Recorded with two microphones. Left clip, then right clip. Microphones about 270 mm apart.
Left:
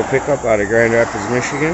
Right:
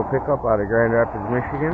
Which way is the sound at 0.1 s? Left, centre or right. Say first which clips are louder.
Left 4 dB; left.